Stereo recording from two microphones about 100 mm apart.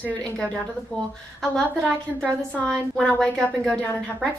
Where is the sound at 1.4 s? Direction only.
5° left (ahead or behind).